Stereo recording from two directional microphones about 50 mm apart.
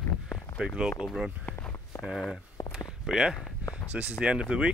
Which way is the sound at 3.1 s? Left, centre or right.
Centre.